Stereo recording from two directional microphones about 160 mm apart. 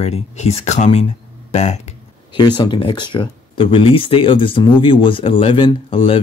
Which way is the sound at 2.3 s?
30° left (ahead or behind).